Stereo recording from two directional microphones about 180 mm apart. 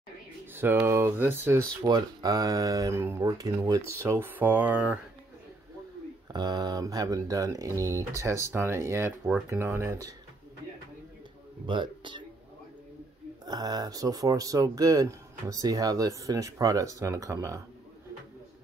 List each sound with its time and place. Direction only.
0.8 s speech: 15° right (ahead or behind)
6.3 s speech: 25° right (ahead or behind)
11.6 s speech: 25° right (ahead or behind)
13.5 s speech: 20° right (ahead or behind)